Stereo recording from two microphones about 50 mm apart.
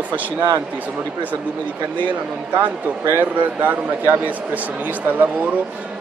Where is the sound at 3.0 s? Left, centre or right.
Right.